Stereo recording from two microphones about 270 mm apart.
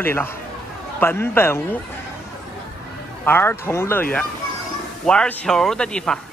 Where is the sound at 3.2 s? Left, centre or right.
Centre.